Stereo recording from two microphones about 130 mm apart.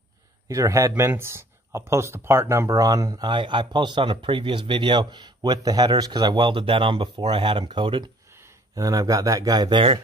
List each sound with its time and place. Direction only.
0.5 s speech: 25° right (ahead or behind)
8.3 s speech: 20° right (ahead or behind); by 9.9 s 35° right (ahead or behind)